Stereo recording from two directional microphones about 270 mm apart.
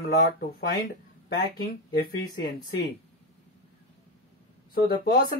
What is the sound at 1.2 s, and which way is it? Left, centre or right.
Speech, left.